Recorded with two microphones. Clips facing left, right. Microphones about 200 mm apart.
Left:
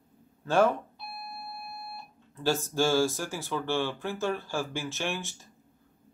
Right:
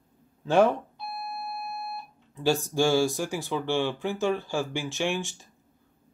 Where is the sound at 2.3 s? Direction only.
15° right (ahead or behind).